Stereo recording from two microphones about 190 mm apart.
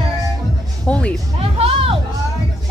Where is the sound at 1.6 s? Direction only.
30° right (ahead or behind).